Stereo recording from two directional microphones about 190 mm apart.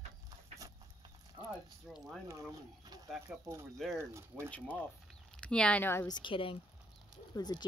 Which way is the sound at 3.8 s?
Centre (ahead or behind).